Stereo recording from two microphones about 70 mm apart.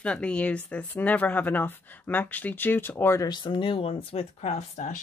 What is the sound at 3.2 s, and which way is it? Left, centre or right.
Speech, left.